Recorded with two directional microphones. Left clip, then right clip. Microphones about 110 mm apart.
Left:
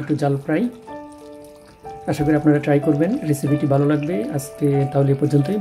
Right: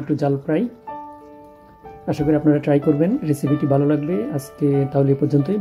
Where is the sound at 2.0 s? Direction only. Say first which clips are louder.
Even; 20° right (ahead or behind).